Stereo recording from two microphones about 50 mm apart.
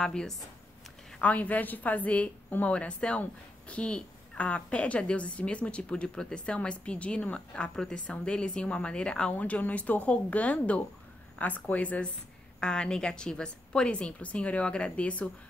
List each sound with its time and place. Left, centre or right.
0.0 s a woman's voice: centre
1.2 s a woman's voice: left
9.4 s a woman's voice: left
12.5 s a woman's voice: centre